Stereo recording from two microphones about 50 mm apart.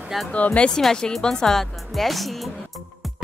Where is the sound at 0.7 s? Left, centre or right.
Centre.